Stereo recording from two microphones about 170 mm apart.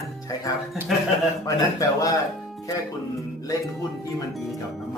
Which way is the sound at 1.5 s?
20° left (ahead or behind).